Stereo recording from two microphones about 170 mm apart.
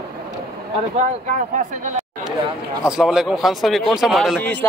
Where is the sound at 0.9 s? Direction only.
45° right (ahead or behind).